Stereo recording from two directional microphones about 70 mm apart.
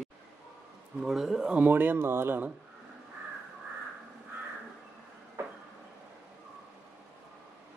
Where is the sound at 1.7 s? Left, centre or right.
Right.